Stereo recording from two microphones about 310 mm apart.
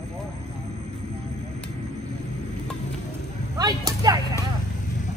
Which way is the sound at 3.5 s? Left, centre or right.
Centre.